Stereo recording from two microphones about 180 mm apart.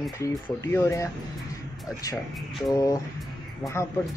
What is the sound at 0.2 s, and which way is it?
Speech, 15° left (ahead or behind).